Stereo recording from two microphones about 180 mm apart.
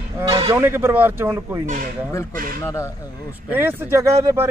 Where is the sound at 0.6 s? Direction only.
15° right (ahead or behind).